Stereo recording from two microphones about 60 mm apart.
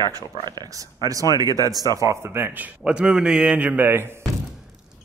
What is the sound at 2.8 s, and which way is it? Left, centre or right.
Speech, centre.